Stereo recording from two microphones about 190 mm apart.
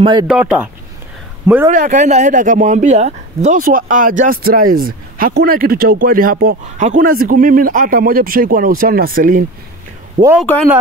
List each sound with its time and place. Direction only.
0.0 s speech: 25° right (ahead or behind)
0.3 s speech: 5° right (ahead or behind)
1.7 s speech: 40° right (ahead or behind)
10.4 s speech: 5° left (ahead or behind)